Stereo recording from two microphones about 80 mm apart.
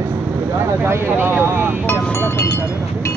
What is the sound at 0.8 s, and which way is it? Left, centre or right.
Speech, right.